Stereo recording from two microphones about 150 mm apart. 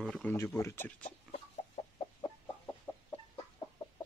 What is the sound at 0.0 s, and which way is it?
Speech, 5° left (ahead or behind).